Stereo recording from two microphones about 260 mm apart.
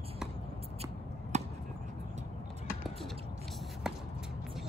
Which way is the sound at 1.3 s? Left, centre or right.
Right.